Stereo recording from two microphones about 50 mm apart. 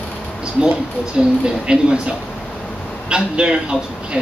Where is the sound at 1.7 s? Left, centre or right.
Centre.